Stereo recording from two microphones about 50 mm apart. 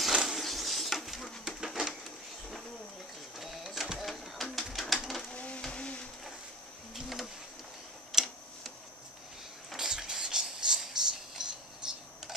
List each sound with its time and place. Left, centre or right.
0.0 s a sound: centre
0.4 s bird: centre
3.3 s printer: centre
4.0 s a sound: centre
4.7 s bird: centre
5.3 s printer: left
5.6 s blender: centre
8.1 s tick-tock: centre
9.8 s a sound: centre